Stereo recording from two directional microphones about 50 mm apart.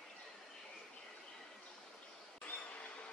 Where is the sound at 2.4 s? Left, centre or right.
Left.